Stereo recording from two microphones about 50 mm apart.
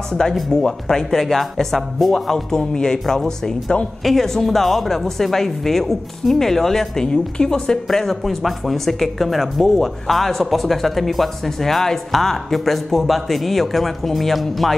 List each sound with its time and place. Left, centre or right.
0.1 s speech: centre